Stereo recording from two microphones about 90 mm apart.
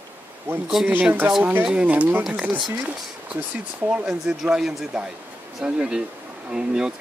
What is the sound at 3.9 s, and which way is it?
Speech, 5° right (ahead or behind).